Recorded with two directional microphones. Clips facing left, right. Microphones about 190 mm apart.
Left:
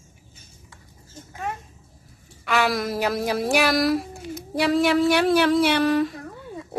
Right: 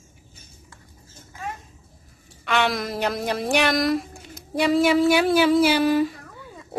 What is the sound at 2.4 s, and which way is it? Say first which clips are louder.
A woman's voice: left 1 dB; centre (ahead or behind).